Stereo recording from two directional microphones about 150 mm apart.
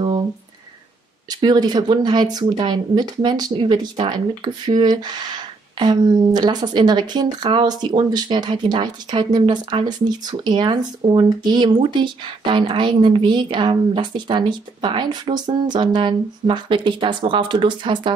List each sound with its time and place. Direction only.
1.3 s speech: 30° right (ahead or behind)